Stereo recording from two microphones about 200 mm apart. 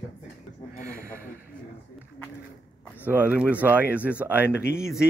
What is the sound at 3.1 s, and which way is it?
Speech, 10° right (ahead or behind).